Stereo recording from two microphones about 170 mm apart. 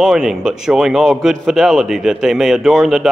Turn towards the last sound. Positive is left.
turn(degrees=0)  # may be behind; listen again after turning